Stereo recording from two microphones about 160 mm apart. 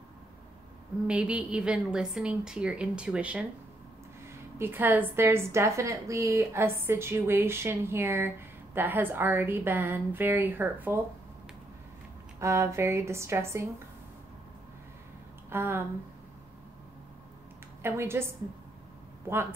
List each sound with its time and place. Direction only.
1.0 s a woman's voice: 5° right (ahead or behind)
4.6 s a woman's voice: 15° right (ahead or behind)
12.4 s a woman's voice: 20° right (ahead or behind)
15.5 s a woman's voice: 15° right (ahead or behind)
17.8 s a woman's voice: 15° right (ahead or behind)